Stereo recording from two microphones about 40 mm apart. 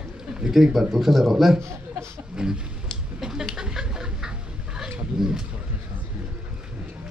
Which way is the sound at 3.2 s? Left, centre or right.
Centre.